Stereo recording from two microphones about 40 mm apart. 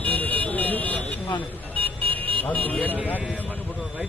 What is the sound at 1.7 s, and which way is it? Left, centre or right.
Vehicle, left.